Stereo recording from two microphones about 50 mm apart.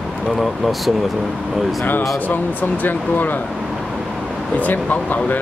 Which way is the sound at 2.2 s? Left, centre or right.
Left.